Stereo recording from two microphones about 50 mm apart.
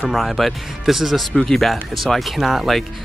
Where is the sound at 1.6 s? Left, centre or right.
Centre.